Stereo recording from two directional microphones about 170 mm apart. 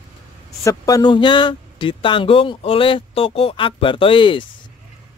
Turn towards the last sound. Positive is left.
turn(degrees=30)  # may be behind; listen again after turning